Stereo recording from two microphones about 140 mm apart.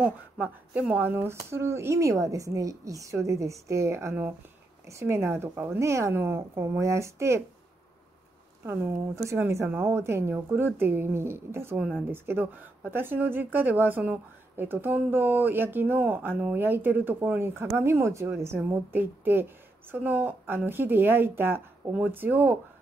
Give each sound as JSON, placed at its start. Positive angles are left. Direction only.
{"t": 0.0, "sound": "speech", "side_deg": -10}
{"t": 8.6, "sound": "speech", "side_deg": -20}